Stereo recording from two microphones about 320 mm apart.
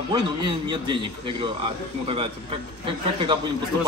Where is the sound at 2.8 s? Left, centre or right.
Centre.